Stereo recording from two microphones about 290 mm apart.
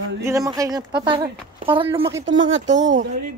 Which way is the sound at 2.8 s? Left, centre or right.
Right.